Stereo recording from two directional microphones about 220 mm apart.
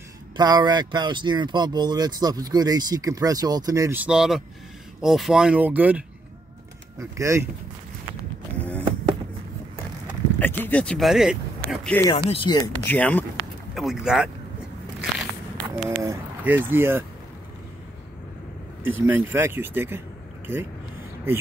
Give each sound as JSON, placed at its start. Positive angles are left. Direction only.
{"t": 0.4, "sound": "speech", "side_deg": -20}
{"t": 10.4, "sound": "speech", "side_deg": 5}
{"t": 12.3, "sound": "speech", "side_deg": 20}
{"t": 12.8, "sound": "speech", "side_deg": 5}
{"t": 15.0, "sound": "a sound", "side_deg": 0}
{"t": 16.0, "sound": "speech", "side_deg": -10}
{"t": 18.9, "sound": "speech", "side_deg": -10}